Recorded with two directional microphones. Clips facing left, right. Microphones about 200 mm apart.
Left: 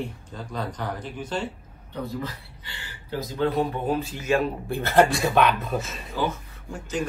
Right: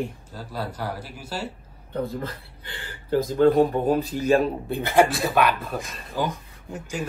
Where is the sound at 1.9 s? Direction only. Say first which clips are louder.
Right 3 dB; 55° right (ahead or behind); by 4.4 s 35° right (ahead or behind).